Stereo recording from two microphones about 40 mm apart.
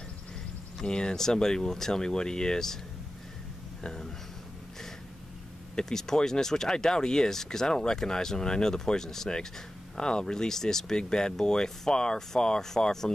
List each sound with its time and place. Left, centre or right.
0.7 s speech: left
3.8 s speech: centre
5.8 s speech: centre